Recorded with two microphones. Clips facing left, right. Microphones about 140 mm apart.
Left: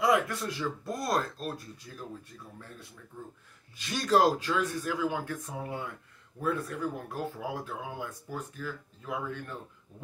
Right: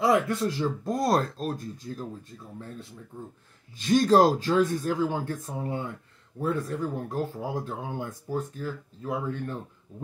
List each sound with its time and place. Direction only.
0.0 s speech: 35° right (ahead or behind)
3.8 s speech: 35° right (ahead or behind)